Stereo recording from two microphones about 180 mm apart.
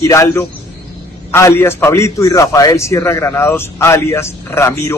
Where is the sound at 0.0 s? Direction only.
15° left (ahead or behind).